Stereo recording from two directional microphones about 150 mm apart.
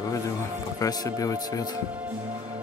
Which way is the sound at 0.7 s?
25° left (ahead or behind).